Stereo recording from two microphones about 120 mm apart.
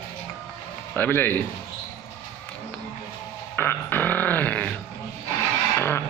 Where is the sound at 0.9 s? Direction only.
15° left (ahead or behind).